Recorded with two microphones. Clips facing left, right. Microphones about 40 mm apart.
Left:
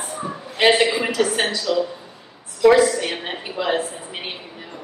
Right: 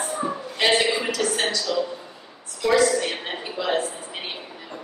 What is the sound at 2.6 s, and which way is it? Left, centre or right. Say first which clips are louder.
A woman's voice: left 5 dB; centre.